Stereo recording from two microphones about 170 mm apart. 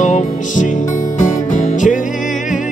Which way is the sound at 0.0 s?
45° left (ahead or behind).